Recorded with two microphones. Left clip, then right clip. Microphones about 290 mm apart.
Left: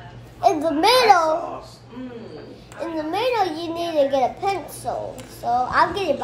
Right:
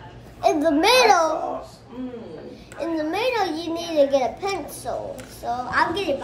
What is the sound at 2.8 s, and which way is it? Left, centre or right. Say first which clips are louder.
A child's voice: even; centre.